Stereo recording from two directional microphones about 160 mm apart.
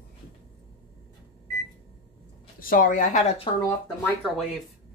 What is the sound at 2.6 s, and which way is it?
Speech, 60° left (ahead or behind).